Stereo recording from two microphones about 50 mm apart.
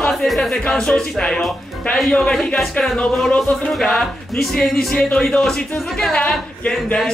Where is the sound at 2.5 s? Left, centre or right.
Centre.